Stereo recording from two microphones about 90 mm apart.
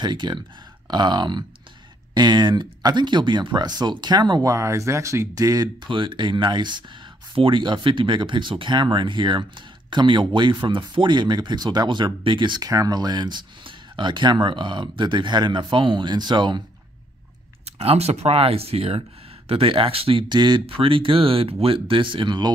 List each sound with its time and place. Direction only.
0.0 s speech: 55° right (ahead or behind)
4.5 s speech: 35° right (ahead or behind)
5.9 s speech: 65° right (ahead or behind)
7.3 s speech: 70° right (ahead or behind); by 16.6 s 55° right (ahead or behind)
17.8 s speech: 90° right; by 22.5 s 60° right (ahead or behind)